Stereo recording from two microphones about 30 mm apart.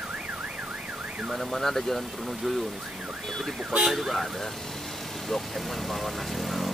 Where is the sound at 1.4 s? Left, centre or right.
Centre.